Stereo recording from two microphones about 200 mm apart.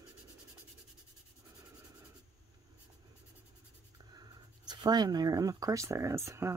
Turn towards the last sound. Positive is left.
turn(degrees=-15)  # may be behind; listen again after turning